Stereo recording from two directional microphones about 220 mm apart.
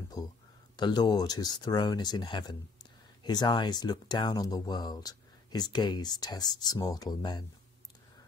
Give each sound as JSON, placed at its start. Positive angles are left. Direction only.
{"t": 0.7, "sound": "speech", "side_deg": 20}